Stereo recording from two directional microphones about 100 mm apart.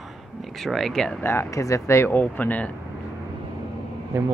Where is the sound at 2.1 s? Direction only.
15° left (ahead or behind).